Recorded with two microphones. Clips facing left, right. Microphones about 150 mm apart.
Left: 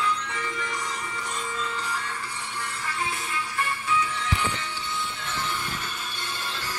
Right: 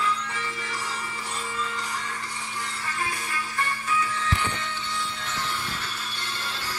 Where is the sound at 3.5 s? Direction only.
10° left (ahead or behind).